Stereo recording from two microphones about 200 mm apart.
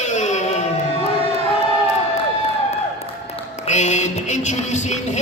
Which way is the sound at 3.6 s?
35° left (ahead or behind).